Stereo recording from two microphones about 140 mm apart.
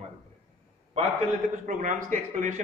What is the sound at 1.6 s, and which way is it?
A man's voice, 65° right (ahead or behind).